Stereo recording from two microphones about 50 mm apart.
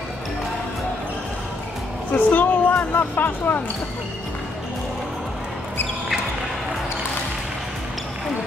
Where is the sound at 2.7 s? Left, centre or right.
Left.